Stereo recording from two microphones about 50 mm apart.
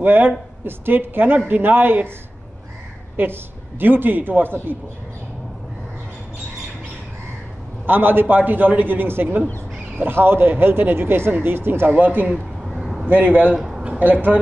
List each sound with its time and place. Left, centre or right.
0.0 s a man's voice: right
3.2 s a man's voice: right
7.8 s a man's voice: right
11.9 s a man's voice: right
12.3 s a sound: centre
13.0 s a man's voice: right
13.6 s a sound: centre
13.8 s speech: right